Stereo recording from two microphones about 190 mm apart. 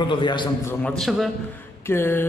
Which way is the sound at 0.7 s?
5° left (ahead or behind).